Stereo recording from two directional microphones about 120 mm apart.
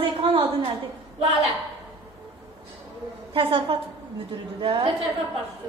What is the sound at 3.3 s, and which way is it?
A woman's voice, 50° right (ahead or behind).